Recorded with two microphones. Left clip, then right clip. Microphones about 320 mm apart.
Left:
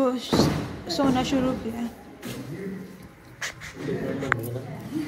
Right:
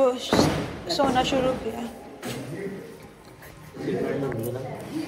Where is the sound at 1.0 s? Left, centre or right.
Centre.